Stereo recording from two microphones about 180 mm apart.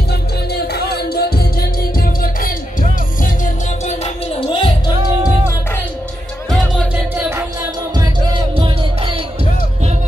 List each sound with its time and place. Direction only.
0.6 s music: 60° left (ahead or behind); by 4.9 s 25° left (ahead or behind)
6.5 s music: centre (ahead or behind)
7.9 s music: 25° right (ahead or behind)